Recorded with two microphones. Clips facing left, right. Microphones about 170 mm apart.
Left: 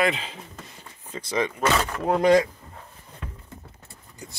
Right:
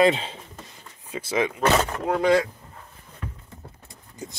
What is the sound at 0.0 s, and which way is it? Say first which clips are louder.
Speech: right 5 dB; 30° right (ahead or behind).